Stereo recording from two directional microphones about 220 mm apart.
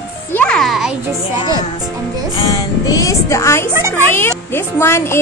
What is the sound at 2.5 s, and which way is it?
Speech, 15° left (ahead or behind).